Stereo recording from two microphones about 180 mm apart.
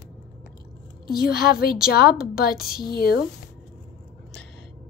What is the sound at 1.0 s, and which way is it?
A woman's voice, 55° left (ahead or behind).